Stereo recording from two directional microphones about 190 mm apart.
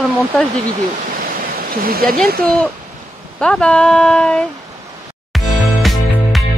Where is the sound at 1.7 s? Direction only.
50° right (ahead or behind).